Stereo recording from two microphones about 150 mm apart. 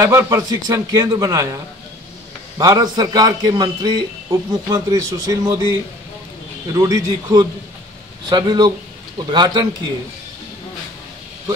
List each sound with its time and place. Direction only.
0.0 s a man's voice: 20° right (ahead or behind)